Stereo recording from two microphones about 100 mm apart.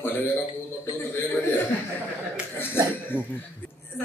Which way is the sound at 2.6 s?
20° left (ahead or behind).